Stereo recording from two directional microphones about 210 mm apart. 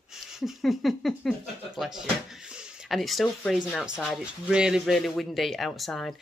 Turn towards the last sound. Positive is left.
turn(degrees=0)  # may be behind; listen again after turning